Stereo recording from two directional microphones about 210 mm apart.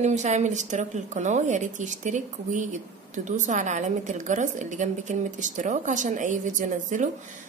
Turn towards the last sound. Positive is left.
turn(degrees=-35)  # may be behind; listen again after turning